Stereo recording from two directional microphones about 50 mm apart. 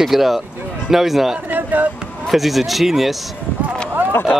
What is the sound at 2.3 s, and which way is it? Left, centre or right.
Speech, centre.